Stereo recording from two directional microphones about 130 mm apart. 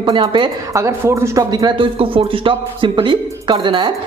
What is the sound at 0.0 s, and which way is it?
Speech, 35° right (ahead or behind).